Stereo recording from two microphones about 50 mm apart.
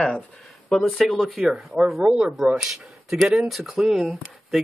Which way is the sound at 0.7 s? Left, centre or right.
Centre.